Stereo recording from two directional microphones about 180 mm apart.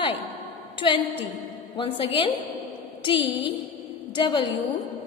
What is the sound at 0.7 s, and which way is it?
A woman's voice, 30° left (ahead or behind).